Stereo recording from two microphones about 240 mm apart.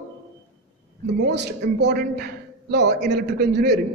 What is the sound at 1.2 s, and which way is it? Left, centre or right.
A man's voice, right.